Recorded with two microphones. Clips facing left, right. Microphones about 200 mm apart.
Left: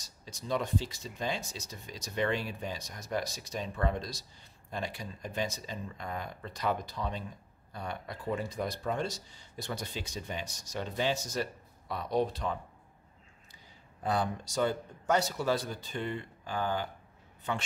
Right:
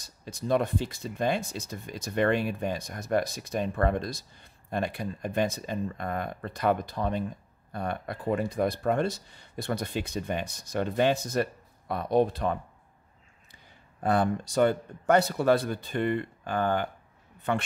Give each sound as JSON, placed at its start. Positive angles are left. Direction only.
{"t": 0.0, "sound": "speech", "side_deg": -55}
{"t": 14.0, "sound": "a man's voice", "side_deg": -55}